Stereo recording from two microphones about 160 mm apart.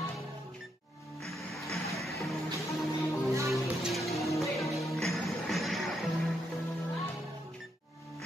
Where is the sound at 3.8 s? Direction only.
Centre (ahead or behind).